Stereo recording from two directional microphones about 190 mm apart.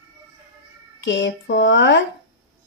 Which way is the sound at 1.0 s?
70° left (ahead or behind).